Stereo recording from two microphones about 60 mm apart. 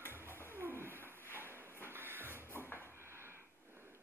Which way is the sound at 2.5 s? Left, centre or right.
Left.